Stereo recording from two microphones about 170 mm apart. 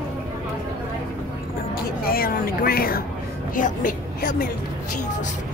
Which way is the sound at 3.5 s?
50° left (ahead or behind).